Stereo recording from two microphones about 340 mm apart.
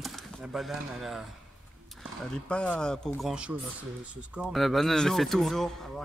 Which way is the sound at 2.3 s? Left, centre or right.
Centre.